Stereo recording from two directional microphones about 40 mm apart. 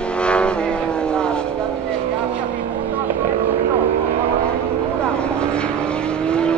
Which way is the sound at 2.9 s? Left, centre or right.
Right.